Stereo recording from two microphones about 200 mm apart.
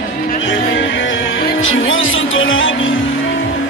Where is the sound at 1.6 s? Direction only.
80° left.